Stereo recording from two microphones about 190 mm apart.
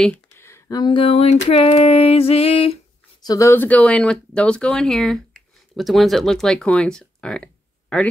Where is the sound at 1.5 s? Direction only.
30° left (ahead or behind).